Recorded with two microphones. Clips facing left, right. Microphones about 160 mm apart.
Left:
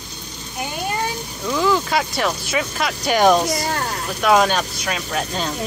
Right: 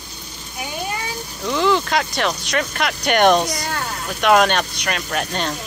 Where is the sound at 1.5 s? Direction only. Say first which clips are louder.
Right 1 dB; centre (ahead or behind).